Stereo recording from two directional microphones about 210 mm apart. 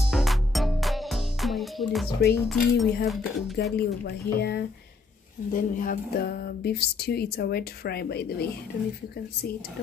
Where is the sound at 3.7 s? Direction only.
50° left (ahead or behind).